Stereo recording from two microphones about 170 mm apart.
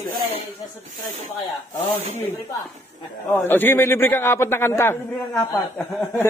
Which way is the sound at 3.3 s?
10° left (ahead or behind).